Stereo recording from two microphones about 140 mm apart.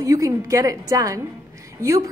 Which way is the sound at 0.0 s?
25° right (ahead or behind).